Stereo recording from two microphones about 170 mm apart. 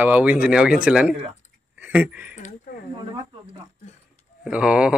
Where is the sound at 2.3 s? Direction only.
45° left (ahead or behind).